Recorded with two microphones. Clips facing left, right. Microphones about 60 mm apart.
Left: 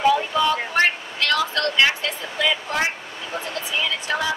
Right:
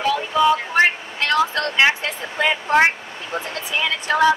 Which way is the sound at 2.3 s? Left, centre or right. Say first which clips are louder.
Right 6 dB; right.